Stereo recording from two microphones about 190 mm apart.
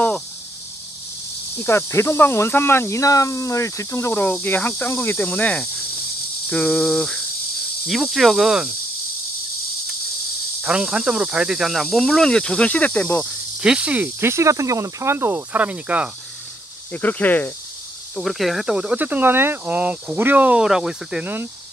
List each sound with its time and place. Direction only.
1.6 s speech: 15° left (ahead or behind)
10.6 s speech: 5° right (ahead or behind)
13.6 s speech: 5° right (ahead or behind)
16.9 s speech: 10° left (ahead or behind); by 21.5 s 10° right (ahead or behind)